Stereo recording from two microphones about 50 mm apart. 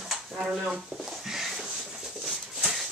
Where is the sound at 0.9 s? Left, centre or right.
Centre.